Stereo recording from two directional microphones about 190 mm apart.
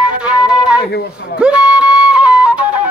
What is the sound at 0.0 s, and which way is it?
Music, 5° right (ahead or behind).